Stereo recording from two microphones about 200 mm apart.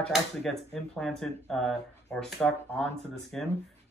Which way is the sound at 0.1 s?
Centre (ahead or behind).